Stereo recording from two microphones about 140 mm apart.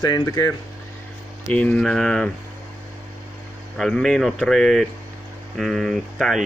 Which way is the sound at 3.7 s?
Centre (ahead or behind).